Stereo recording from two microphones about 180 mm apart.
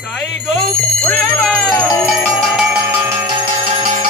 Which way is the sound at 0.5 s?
5° left (ahead or behind).